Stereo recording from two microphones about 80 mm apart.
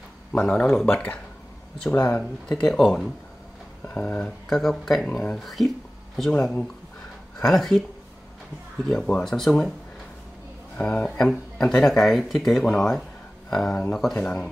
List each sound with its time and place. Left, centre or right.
0.4 s speech: centre
0.9 s speech: left
4.5 s speech: centre
8.8 s speech: centre
10.8 s speech: centre